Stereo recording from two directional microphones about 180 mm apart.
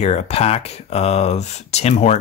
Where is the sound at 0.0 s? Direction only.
35° left (ahead or behind).